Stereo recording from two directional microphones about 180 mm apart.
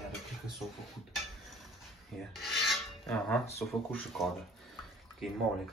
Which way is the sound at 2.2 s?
Centre (ahead or behind).